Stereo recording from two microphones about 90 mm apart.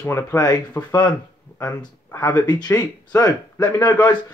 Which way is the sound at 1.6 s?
35° left (ahead or behind).